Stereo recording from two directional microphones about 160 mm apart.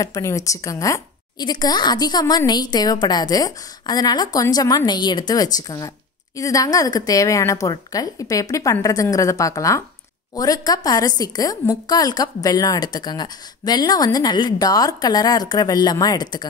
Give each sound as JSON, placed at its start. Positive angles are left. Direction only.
{"t": 0.0, "sound": "a woman's voice", "side_deg": 20}